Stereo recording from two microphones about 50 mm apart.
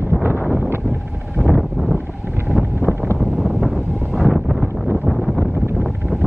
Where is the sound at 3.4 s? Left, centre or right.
Centre.